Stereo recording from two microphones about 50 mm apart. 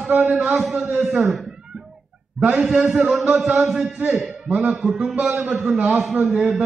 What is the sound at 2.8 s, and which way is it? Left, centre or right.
Speech, right.